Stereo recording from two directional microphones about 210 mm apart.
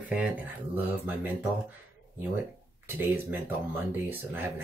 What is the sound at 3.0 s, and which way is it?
Speech, 10° right (ahead or behind).